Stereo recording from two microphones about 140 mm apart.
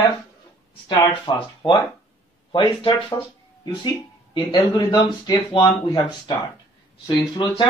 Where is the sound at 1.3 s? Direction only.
30° left (ahead or behind).